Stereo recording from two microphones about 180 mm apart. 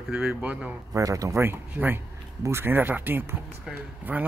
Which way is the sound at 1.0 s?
20° right (ahead or behind).